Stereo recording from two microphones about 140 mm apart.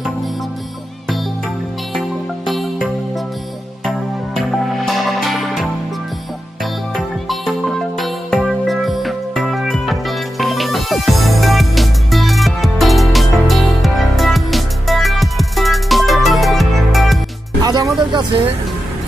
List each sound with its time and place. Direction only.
2.0 s music: centre (ahead or behind)
4.4 s music: centre (ahead or behind)
7.2 s music: centre (ahead or behind)
17.6 s music: 30° right (ahead or behind)